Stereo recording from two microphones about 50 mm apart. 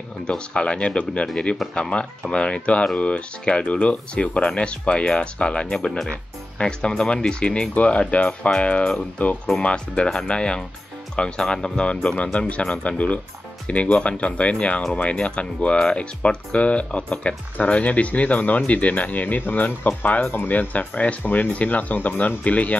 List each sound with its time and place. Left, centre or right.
0.3 s speech: centre